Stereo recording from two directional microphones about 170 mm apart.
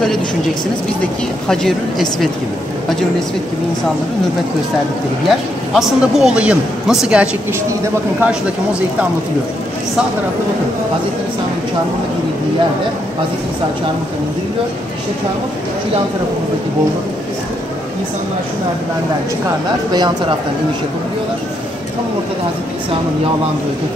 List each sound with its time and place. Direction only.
1.5 s speech: centre (ahead or behind)
5.3 s speech: centre (ahead or behind)
19.9 s speech: 25° right (ahead or behind)